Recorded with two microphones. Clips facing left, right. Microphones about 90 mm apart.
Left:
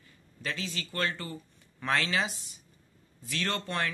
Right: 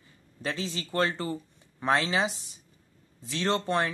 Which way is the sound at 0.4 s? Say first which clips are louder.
Right 4 dB; 25° right (ahead or behind).